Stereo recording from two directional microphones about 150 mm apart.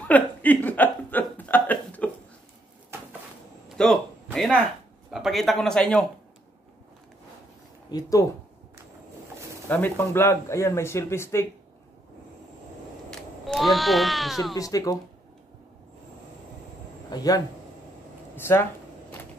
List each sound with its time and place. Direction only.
0.1 s a sound: 10° left (ahead or behind)
3.6 s a sound: 5° left (ahead or behind)
5.1 s speech: centre (ahead or behind)
7.9 s speech: 20° left (ahead or behind)
9.7 s speech: 10° left (ahead or behind)
13.1 s speech: centre (ahead or behind)
14.5 s speech: 25° left (ahead or behind)
17.1 s speech: 25° left (ahead or behind)